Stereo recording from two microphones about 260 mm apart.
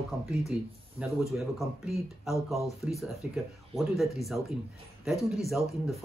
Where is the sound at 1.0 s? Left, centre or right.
Centre.